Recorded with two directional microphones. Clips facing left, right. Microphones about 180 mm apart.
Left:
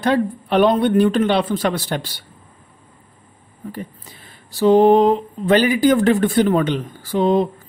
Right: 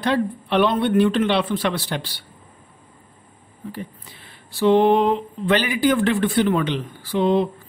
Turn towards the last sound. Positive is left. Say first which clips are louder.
# left 2 dB
turn(degrees=45)  # may be behind; listen again after turning